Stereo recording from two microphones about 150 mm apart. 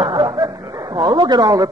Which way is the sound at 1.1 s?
30° right (ahead or behind).